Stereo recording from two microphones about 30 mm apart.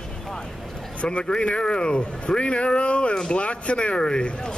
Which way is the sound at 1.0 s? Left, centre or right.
Left.